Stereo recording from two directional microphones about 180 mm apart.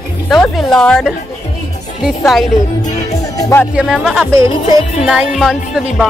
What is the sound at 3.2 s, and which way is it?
Music, 15° left (ahead or behind).